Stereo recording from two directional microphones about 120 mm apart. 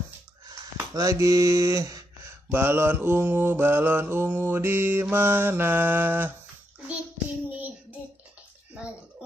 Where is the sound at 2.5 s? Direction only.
20° right (ahead or behind).